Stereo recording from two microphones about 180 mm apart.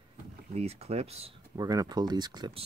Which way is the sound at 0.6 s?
35° right (ahead or behind).